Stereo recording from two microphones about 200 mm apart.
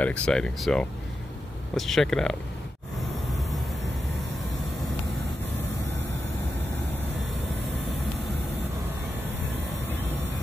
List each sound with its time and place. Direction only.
0.0 s speech: 5° left (ahead or behind)
3.3 s vehicle: centre (ahead or behind)